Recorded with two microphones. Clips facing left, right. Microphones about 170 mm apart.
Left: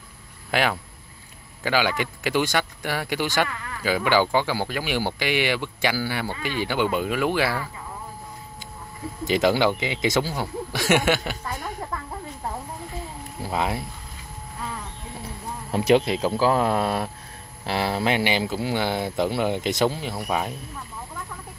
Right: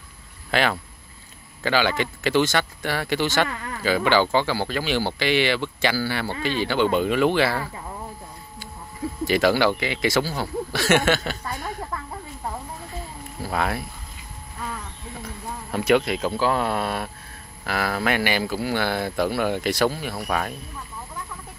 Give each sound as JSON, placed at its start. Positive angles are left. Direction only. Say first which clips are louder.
{"t": 0.5, "sound": "speech", "louder": "right 1 dB", "side_deg": 10}
{"t": 9.2, "sound": "speech", "louder": "right 1 dB", "side_deg": 20}
{"t": 13.4, "sound": "speech", "louder": "even", "side_deg": 15}
{"t": 15.2, "sound": "insect", "louder": "even", "side_deg": 30}
{"t": 16.3, "sound": "speech", "louder": "left 3 dB", "side_deg": 35}